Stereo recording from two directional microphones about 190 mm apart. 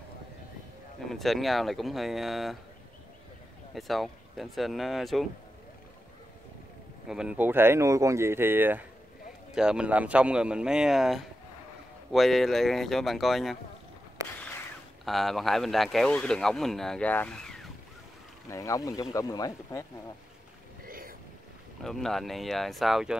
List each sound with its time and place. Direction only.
1.0 s speech: centre (ahead or behind)
3.7 s speech: centre (ahead or behind)
7.1 s speech: 5° right (ahead or behind)
15.0 s speech: centre (ahead or behind)
18.5 s speech: 15° left (ahead or behind)
20.8 s boat: 50° right (ahead or behind)
21.8 s speech: centre (ahead or behind)